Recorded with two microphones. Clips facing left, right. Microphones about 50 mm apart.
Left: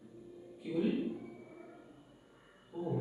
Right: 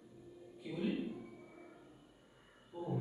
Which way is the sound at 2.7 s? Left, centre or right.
Centre.